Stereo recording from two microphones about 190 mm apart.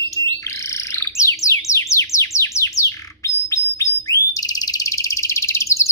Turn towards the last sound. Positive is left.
turn(degrees=15)  # may be behind; listen again after turning